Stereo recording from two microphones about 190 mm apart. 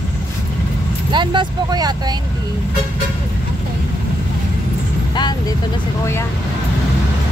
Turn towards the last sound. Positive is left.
turn(degrees=20)  # may be behind; listen again after turning